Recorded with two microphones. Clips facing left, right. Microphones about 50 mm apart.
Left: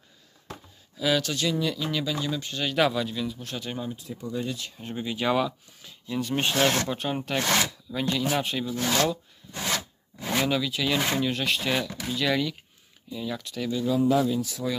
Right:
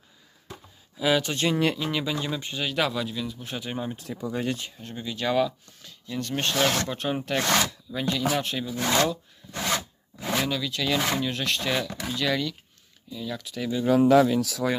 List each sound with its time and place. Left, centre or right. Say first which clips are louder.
0.9 s speech: right 2 dB; centre
1.3 s speech: right 2 dB; right
1.8 s speech: right 1 dB; centre
2.5 s speech: left 3 dB; centre
3.4 s speech: right 1 dB; centre
3.9 s speech: right 2 dB; right
4.8 s speech: left 2 dB; centre
6.9 s speech: right 1 dB; centre
13.4 s speech: even; centre
13.8 s speech: right 5 dB; right